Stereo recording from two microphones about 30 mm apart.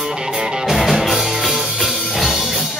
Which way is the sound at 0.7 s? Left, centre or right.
Centre.